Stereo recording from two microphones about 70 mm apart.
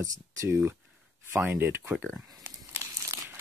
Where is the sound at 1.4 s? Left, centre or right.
Right.